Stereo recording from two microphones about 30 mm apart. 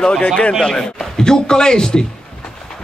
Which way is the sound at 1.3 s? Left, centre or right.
Left.